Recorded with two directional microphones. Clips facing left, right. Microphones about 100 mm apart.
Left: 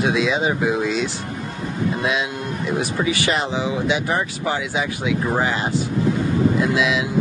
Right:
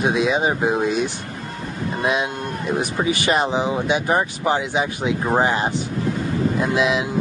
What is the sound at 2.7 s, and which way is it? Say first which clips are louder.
Speech: even; 25° right (ahead or behind).